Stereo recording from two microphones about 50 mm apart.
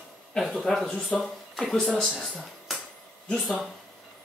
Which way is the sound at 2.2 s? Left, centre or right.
Centre.